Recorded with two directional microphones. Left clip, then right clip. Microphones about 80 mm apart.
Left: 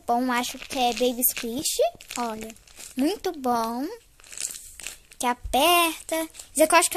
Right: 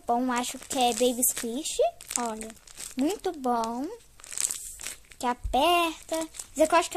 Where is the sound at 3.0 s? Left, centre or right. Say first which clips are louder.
Left 3 dB; centre.